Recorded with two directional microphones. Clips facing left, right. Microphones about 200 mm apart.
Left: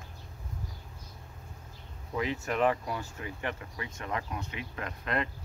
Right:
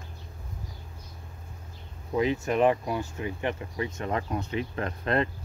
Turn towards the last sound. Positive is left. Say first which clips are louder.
# right 6 dB
turn(degrees=-30)  # may be behind; listen again after turning